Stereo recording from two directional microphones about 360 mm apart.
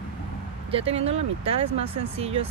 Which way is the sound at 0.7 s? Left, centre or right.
Centre.